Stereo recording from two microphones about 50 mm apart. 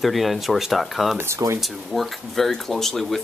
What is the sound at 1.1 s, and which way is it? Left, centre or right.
Speech, right.